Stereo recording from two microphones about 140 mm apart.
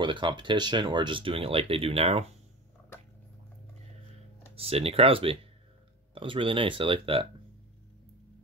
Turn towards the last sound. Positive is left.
turn(degrees=-40)  # may be behind; listen again after turning